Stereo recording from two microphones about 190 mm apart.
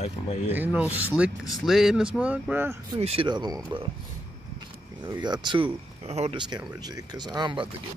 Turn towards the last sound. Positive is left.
turn(degrees=-25)  # may be behind; listen again after turning